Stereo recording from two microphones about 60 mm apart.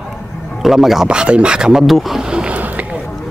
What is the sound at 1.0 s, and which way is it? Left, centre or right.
Speech, centre.